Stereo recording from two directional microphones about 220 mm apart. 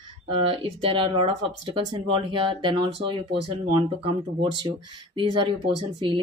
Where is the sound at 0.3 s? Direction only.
25° right (ahead or behind).